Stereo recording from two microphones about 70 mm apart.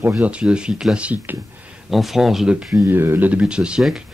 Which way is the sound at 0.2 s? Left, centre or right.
Centre.